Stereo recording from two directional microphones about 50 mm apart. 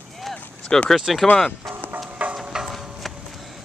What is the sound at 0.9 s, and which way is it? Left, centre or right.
Speech, centre.